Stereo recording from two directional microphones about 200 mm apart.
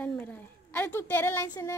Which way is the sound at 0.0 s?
10° left (ahead or behind).